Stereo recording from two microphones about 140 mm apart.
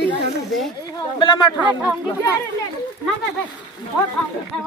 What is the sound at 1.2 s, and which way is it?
Speech, 35° left (ahead or behind).